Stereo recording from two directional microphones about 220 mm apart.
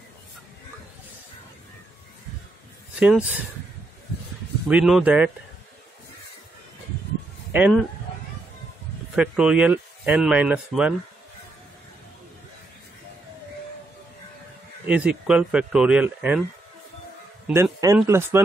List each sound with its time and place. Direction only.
3.0 s speech: 5° right (ahead or behind)
4.6 s speech: 5° right (ahead or behind)
7.5 s a man's voice: 5° right (ahead or behind)
9.1 s speech: 5° right (ahead or behind)
14.9 s speech: 5° right (ahead or behind)
17.5 s a man's voice: 10° right (ahead or behind)